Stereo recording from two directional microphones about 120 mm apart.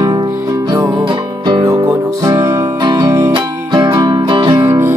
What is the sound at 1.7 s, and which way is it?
Music, 30° right (ahead or behind).